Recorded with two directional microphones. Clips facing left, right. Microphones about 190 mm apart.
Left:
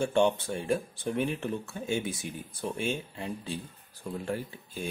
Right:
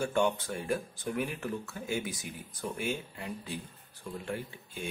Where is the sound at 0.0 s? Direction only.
25° left (ahead or behind).